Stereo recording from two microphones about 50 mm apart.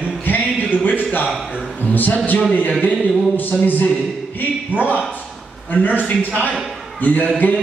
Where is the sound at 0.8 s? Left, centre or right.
Left.